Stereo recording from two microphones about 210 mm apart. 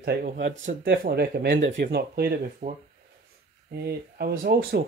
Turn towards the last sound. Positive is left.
turn(degrees=-50)  # may be behind; listen again after turning